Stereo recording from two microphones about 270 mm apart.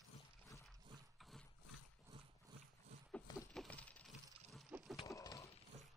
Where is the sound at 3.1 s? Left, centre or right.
Centre.